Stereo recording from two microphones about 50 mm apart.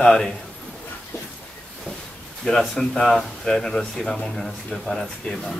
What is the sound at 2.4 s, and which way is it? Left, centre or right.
Speech, centre.